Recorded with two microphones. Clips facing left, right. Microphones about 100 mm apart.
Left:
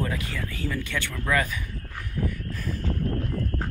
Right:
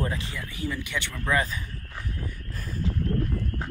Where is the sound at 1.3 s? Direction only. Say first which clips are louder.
Even; 25° right (ahead or behind).